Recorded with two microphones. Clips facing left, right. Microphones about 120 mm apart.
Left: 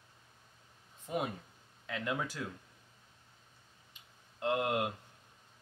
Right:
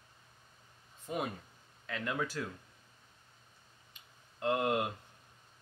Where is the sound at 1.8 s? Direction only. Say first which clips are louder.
Even; 15° left (ahead or behind).